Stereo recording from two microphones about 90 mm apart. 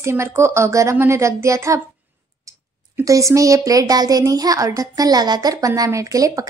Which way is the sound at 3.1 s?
35° right (ahead or behind).